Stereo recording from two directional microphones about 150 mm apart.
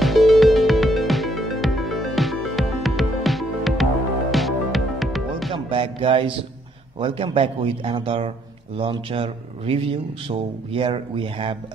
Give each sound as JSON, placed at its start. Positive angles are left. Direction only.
{"t": 0.0, "sound": "music", "side_deg": 0}
{"t": 5.7, "sound": "music", "side_deg": -35}
{"t": 7.0, "sound": "a man's voice", "side_deg": -35}